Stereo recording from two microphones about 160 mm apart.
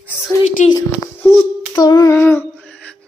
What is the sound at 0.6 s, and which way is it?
Speech, 50° left (ahead or behind).